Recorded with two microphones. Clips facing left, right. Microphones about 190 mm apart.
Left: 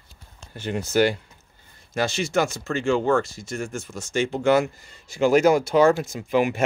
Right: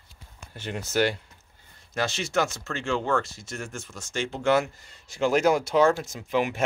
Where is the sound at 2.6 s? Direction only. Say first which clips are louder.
Left 6 dB; 10° left (ahead or behind).